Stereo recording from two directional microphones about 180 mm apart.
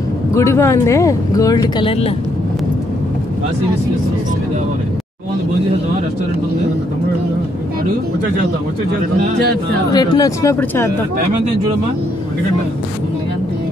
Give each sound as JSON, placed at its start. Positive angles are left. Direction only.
{"t": 0.3, "sound": "speech", "side_deg": 15}
{"t": 9.9, "sound": "speech", "side_deg": 20}